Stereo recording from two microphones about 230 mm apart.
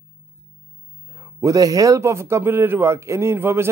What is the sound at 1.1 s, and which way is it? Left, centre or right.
A man's voice, centre.